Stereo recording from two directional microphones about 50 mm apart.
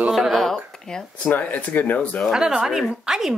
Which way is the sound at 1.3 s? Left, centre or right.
Left.